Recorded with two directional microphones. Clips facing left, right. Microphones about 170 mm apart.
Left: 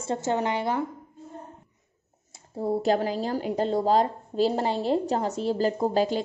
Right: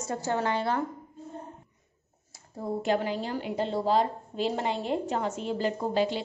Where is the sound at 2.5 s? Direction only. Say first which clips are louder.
Left 4 dB; 35° left (ahead or behind).